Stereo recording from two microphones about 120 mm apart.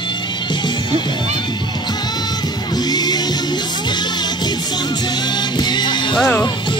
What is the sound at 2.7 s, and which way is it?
Music, 35° left (ahead or behind).